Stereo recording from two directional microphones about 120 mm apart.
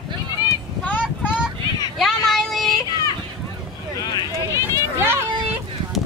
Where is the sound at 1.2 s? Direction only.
10° right (ahead or behind).